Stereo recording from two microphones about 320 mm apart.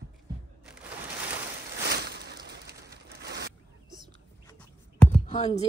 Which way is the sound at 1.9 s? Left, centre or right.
Right.